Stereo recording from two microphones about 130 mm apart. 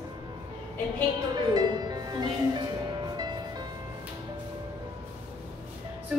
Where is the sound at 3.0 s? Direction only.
35° right (ahead or behind).